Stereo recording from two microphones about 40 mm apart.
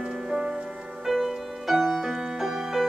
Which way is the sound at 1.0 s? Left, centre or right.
Centre.